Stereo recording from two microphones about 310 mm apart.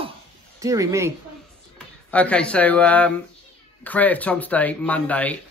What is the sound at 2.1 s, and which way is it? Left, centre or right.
Speech, centre.